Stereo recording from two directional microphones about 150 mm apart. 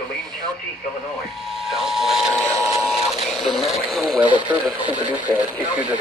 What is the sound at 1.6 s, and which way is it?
Speech, centre (ahead or behind).